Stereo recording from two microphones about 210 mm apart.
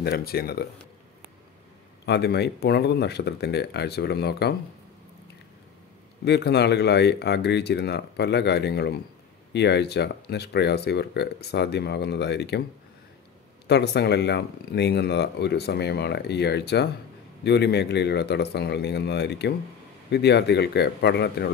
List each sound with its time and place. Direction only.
0.0 s speech: 45° left (ahead or behind)
2.0 s speech: 50° left (ahead or behind)
6.2 s speech: 50° left (ahead or behind)
13.7 s speech: 50° left (ahead or behind)